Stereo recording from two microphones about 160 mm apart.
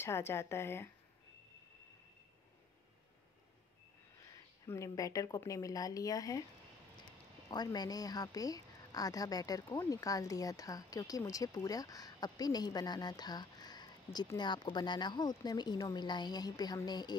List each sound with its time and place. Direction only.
0.0 s speech: 15° left (ahead or behind)
4.3 s speech: 20° left (ahead or behind)
7.4 s a woman's voice: 25° left (ahead or behind)